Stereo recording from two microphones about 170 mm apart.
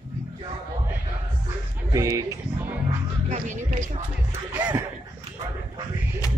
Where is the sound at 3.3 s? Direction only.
45° right (ahead or behind).